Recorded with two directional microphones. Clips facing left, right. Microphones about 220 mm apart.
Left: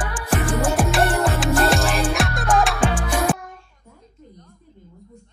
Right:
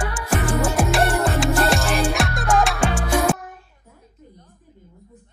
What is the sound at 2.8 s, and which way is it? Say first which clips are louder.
Music: even; 25° right (ahead or behind).